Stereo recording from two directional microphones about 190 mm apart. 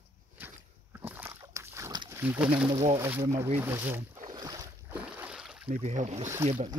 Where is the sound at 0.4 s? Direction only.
10° right (ahead or behind).